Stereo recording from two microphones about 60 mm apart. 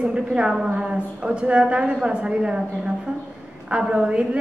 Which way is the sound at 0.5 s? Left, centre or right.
Centre.